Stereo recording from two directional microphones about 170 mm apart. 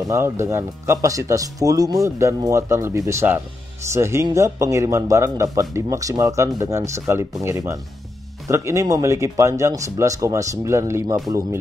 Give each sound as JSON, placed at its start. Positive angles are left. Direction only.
{"t": 0.1, "sound": "speech", "side_deg": -15}